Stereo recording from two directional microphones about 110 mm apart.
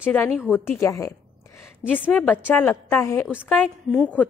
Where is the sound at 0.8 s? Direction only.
30° left (ahead or behind).